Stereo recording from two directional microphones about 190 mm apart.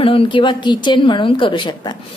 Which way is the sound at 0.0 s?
30° left (ahead or behind).